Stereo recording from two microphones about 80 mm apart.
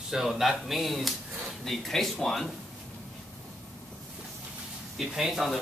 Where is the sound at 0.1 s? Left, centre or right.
Centre.